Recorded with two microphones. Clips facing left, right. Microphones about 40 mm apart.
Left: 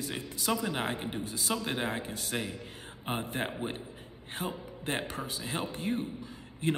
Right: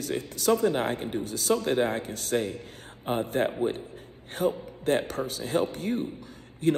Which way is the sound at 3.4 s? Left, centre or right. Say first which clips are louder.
Right 10 dB; centre.